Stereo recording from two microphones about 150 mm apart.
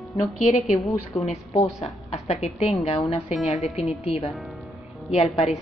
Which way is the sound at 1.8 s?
45° left (ahead or behind).